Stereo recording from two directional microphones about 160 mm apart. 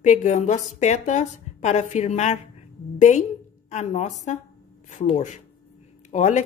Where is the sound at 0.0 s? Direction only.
45° left (ahead or behind).